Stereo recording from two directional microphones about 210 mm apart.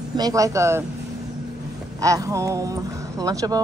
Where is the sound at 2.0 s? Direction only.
15° right (ahead or behind).